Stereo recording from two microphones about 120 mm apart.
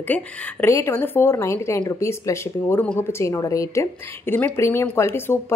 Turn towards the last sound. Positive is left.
turn(degrees=20)  # may be behind; listen again after turning